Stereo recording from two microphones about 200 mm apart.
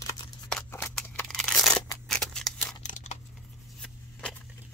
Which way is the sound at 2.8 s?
35° left (ahead or behind).